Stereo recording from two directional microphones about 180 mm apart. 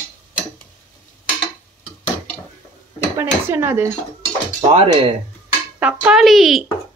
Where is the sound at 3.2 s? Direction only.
15° right (ahead or behind).